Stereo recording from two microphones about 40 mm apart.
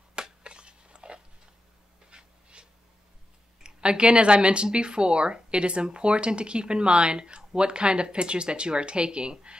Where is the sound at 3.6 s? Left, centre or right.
Right.